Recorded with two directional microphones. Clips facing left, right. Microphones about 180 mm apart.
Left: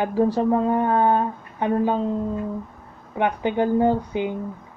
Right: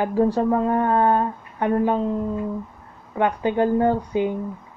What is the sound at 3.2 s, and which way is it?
A woman's voice, 20° left (ahead or behind).